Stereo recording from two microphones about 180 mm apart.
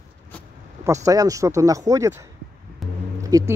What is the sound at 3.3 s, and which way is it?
Speech, 20° right (ahead or behind).